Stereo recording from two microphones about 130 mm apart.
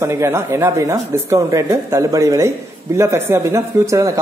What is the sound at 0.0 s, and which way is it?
A man's voice, 20° right (ahead or behind).